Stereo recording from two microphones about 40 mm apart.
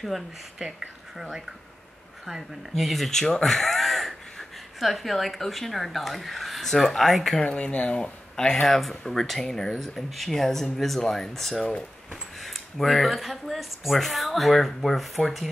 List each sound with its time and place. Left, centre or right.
0.0 s speech: centre
2.7 s speech: centre
7.4 s speech: left
8.6 s speech: centre